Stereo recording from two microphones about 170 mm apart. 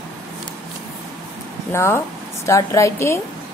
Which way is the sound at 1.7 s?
15° left (ahead or behind).